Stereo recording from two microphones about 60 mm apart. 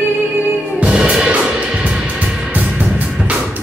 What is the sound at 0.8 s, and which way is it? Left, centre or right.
Music, centre.